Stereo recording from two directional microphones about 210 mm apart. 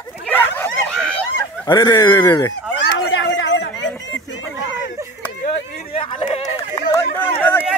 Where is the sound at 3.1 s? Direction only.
55° left (ahead or behind).